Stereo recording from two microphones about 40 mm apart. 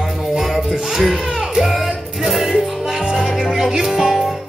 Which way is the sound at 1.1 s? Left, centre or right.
Right.